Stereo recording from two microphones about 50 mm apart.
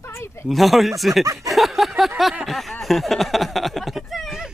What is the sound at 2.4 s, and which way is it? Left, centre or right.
Speech, centre.